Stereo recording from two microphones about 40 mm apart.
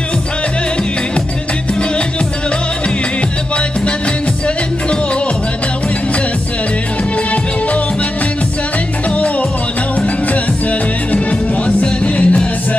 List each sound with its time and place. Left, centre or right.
9.9 s music: left